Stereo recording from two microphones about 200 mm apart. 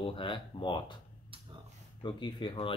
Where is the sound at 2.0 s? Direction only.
25° left (ahead or behind).